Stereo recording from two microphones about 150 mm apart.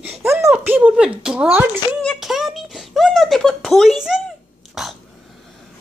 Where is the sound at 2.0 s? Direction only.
Centre (ahead or behind).